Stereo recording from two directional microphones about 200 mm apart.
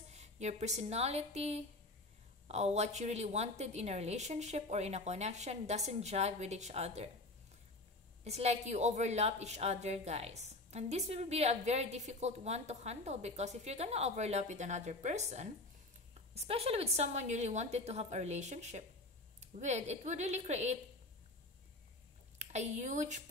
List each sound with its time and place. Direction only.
0.1 s a woman's voice: 35° right (ahead or behind)
8.2 s a woman's voice: 35° right (ahead or behind)
22.4 s speech: 35° right (ahead or behind)